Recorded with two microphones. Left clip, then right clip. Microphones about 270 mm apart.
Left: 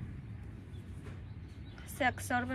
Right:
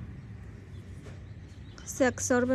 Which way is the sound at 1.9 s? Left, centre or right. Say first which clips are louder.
Right 6 dB; right.